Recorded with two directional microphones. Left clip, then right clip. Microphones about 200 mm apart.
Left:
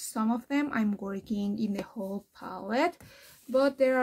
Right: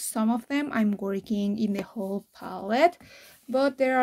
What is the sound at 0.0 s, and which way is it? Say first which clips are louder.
Speech: right 3 dB; 30° right (ahead or behind).